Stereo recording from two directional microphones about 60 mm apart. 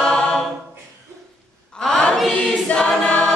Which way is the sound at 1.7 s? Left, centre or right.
Centre.